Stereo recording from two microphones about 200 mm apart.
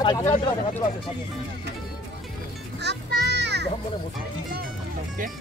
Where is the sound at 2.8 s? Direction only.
60° right (ahead or behind).